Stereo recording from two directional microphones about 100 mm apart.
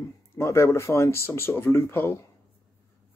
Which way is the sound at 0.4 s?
30° left (ahead or behind).